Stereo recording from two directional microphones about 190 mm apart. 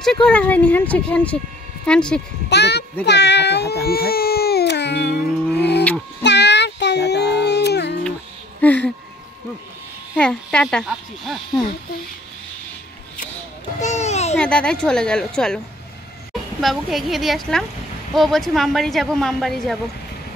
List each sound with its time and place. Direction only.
0.0 s speech: 5° left (ahead or behind)
2.5 s speech: 65° left (ahead or behind)
5.6 s a sound: 60° left (ahead or behind)
6.2 s child singing: 65° left (ahead or behind)
8.5 s a sound: 10° left (ahead or behind)
10.1 s speech: 5° left (ahead or behind)
13.7 s babbling: 35° left (ahead or behind)
14.3 s speech: 5° left (ahead or behind)
16.6 s speech: centre (ahead or behind)